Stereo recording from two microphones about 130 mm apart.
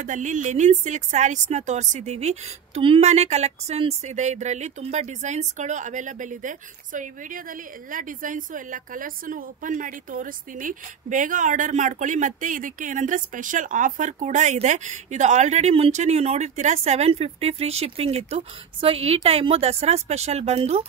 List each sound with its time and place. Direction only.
0.0 s speech: 70° right (ahead or behind); by 20.8 s 55° right (ahead or behind)